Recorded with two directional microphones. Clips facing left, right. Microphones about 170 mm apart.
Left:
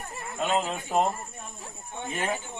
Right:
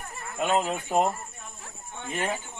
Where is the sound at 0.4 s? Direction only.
15° right (ahead or behind).